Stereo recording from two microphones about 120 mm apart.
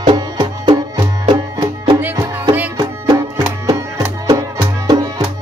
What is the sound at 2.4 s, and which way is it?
Music, 20° right (ahead or behind).